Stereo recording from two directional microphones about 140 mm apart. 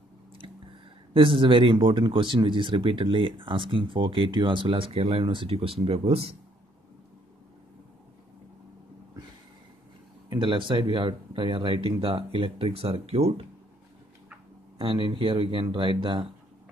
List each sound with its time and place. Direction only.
1.1 s speech: 40° right (ahead or behind)
10.3 s speech: 35° right (ahead or behind)
14.8 s speech: 35° right (ahead or behind)